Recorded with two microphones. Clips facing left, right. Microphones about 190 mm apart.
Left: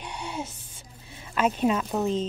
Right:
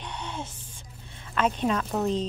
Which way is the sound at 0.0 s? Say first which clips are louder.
Left 2 dB; 10° left (ahead or behind).